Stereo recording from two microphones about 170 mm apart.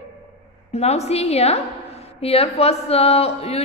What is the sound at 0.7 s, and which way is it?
Speech, 40° left (ahead or behind).